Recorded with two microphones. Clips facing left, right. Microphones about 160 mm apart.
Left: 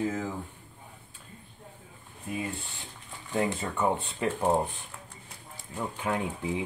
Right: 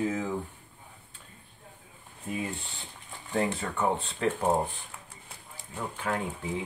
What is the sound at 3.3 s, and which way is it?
Speech, 5° left (ahead or behind).